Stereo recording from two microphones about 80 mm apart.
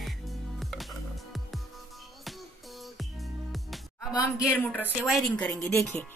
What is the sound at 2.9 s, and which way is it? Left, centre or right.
Music, centre.